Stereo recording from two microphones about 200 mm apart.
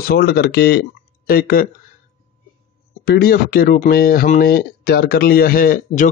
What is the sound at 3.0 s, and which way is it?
Speech, 50° left (ahead or behind).